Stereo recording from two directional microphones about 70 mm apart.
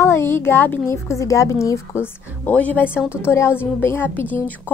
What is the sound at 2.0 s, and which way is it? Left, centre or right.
Speech, left.